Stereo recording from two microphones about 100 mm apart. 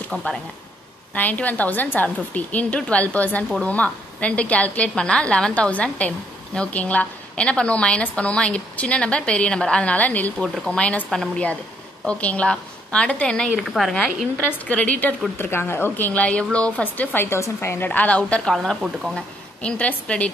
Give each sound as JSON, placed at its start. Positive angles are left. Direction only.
{"t": 0.1, "sound": "a woman's voice", "side_deg": 5}
{"t": 13.7, "sound": "a woman's voice", "side_deg": 0}
{"t": 14.7, "sound": "a woman's voice", "side_deg": 15}
{"t": 18.5, "sound": "a woman's voice", "side_deg": 0}
{"t": 19.1, "sound": "a woman's voice", "side_deg": 10}